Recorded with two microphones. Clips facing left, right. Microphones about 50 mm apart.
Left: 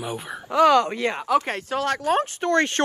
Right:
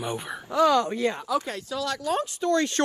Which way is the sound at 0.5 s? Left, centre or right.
Left.